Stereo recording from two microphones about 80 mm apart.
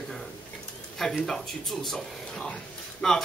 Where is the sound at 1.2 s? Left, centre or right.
Centre.